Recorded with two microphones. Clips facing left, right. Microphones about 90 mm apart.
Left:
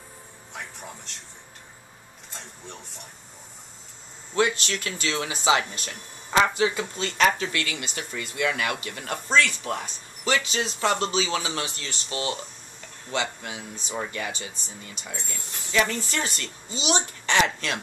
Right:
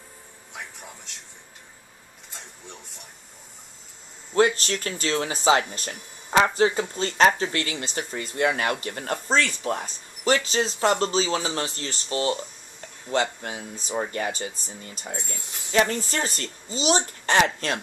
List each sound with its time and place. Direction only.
0.5 s music: 5° right (ahead or behind)
4.3 s speech: 40° right (ahead or behind)